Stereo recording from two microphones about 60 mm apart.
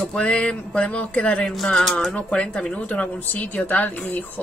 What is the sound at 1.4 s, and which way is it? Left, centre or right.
Speech, centre.